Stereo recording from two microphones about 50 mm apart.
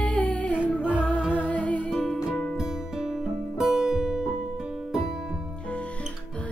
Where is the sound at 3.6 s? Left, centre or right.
Centre.